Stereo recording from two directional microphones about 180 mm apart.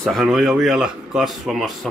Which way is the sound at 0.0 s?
Centre (ahead or behind).